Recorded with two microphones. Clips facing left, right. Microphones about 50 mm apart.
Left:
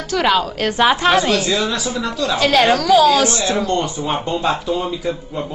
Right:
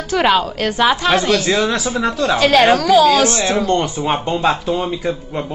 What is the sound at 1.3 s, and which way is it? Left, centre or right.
Speech, right.